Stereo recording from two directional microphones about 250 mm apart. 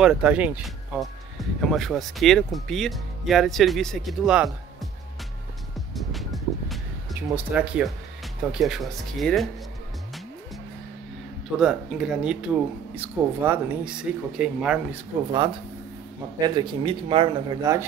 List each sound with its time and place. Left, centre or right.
0.0 s speech: centre
5.9 s music: centre
7.2 s speech: centre
11.5 s speech: centre
16.3 s speech: centre